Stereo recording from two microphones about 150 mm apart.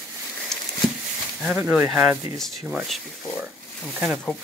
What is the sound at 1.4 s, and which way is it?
Speech, 5° right (ahead or behind).